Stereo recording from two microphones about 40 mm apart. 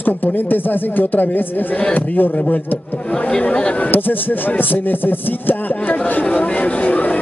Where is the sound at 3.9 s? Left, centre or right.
Left.